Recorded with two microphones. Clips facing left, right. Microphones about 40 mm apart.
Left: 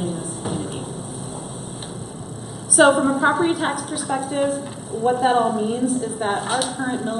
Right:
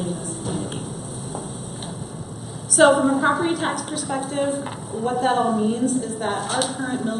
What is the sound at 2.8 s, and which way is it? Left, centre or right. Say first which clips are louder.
A woman's voice: even; centre.